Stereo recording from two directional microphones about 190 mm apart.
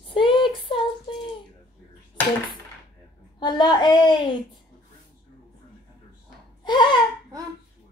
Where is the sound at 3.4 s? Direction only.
25° left (ahead or behind).